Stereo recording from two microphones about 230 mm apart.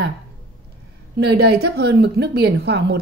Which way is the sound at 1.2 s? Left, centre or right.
Right.